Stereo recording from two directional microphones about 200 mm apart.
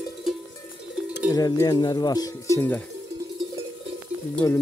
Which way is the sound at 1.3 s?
20° left (ahead or behind).